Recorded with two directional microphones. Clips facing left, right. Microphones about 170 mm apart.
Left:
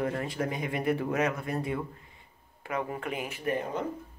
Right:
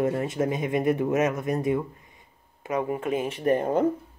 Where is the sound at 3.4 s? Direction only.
45° right (ahead or behind).